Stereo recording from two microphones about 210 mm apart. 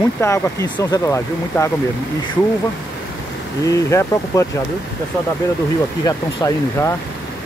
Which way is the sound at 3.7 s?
15° left (ahead or behind).